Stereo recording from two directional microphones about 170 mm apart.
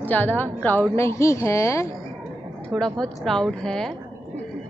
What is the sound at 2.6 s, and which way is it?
A woman's voice, 5° left (ahead or behind).